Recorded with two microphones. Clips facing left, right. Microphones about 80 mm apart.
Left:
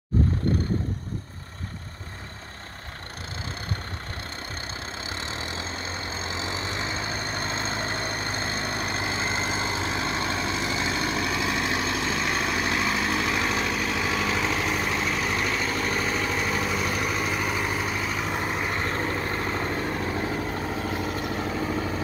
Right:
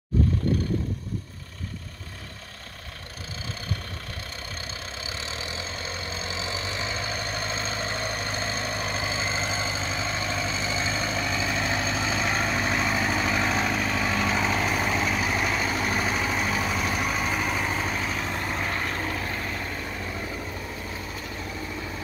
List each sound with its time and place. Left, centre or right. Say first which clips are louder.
5.0 s vehicle: left 1 dB; left
8.5 s vehicle: left 1 dB; centre
18.3 s vehicle: left 1 dB; centre
18.9 s vehicle: left 3 dB; left
20.8 s vehicle: left 7 dB; left